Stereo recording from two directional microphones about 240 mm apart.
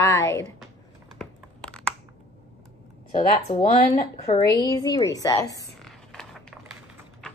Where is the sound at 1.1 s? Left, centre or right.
Centre.